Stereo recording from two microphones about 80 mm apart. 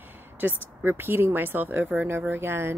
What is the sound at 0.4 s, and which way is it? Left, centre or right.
A woman's voice, right.